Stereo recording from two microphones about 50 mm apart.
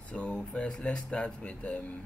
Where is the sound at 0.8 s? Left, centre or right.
Left.